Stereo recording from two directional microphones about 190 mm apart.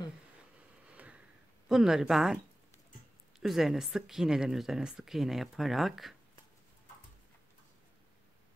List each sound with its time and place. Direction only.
0.9 s sniff: 5° right (ahead or behind)
1.7 s speech: centre (ahead or behind)
3.3 s speech: centre (ahead or behind)